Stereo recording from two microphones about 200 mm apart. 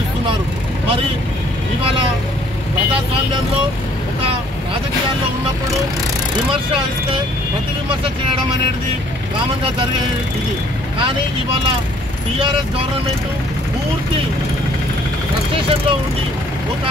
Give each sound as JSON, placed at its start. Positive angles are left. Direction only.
{"t": 15.5, "sound": "speech", "side_deg": -25}